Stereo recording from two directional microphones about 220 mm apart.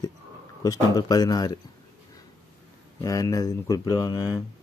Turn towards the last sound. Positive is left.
turn(degrees=20)  # may be behind; listen again after turning